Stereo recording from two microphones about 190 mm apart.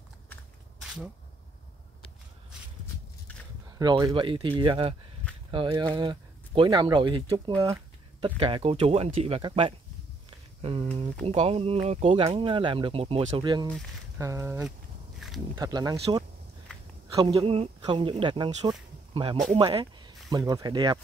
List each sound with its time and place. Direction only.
3.6 s speech: 20° right (ahead or behind)
15.1 s a sound: centre (ahead or behind)
15.5 s speech: 20° right (ahead or behind)